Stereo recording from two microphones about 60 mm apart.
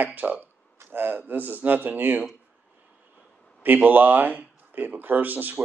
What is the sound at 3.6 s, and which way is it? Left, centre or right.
A man's voice, right.